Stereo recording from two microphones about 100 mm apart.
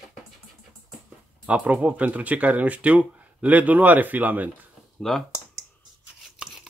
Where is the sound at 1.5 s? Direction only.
15° right (ahead or behind).